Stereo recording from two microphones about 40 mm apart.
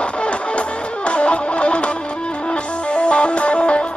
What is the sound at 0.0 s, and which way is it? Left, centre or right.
Music, left.